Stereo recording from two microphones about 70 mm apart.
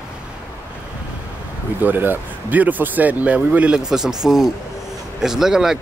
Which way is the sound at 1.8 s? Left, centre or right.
Right.